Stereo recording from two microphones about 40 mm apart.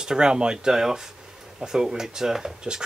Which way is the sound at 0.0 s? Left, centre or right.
Centre.